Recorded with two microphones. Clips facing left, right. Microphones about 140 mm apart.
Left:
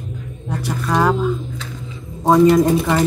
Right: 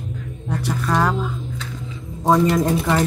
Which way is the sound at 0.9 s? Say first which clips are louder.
Left 4 dB; 5° left (ahead or behind).